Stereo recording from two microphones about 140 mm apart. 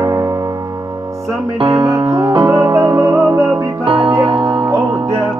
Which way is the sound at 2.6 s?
15° right (ahead or behind).